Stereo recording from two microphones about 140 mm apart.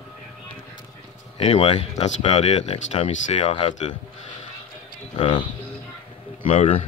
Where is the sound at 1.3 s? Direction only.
45° left (ahead or behind).